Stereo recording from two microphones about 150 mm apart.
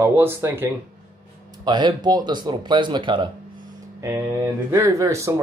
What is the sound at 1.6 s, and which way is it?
Speech, 30° right (ahead or behind).